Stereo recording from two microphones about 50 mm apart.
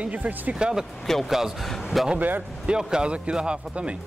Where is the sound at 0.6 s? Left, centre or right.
Centre.